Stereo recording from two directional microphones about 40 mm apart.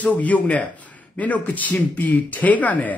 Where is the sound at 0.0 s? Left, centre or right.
Left.